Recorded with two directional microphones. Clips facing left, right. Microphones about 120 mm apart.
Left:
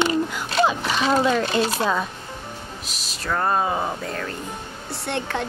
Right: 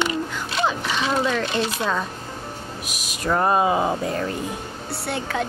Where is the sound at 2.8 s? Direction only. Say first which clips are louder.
Right 5 dB; 15° right (ahead or behind).